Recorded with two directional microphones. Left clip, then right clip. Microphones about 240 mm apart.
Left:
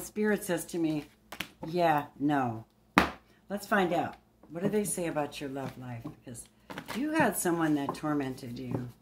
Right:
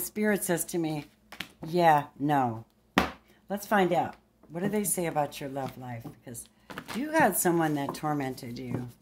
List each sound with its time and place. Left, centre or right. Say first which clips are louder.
0.0 s speech: right 2 dB; right
1.3 s a sound: left 1 dB; centre
1.7 s speech: right 5 dB; right